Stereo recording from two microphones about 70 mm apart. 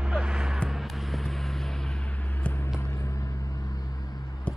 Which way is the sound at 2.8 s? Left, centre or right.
Left.